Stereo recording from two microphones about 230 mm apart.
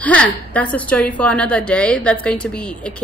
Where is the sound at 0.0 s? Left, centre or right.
Centre.